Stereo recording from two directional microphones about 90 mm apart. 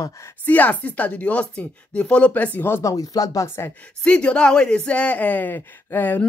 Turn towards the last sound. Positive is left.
turn(degrees=20)  # may be behind; listen again after turning